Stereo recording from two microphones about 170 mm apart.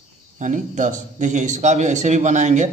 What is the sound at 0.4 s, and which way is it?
Mantra, 45° right (ahead or behind).